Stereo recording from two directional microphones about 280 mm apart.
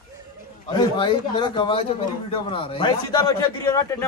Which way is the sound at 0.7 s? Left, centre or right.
Centre.